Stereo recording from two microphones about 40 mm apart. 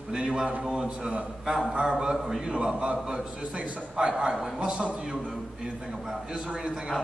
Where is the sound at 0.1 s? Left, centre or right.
Right.